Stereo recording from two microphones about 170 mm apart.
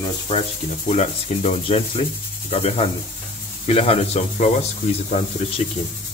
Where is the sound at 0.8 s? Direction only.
40° left (ahead or behind).